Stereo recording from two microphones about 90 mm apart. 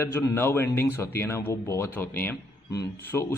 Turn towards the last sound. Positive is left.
turn(degrees=25)  # may be behind; listen again after turning